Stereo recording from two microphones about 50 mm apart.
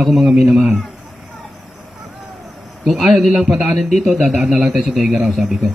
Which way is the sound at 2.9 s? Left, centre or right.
Centre.